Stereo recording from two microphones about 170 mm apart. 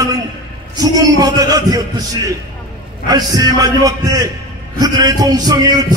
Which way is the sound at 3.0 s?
20° right (ahead or behind).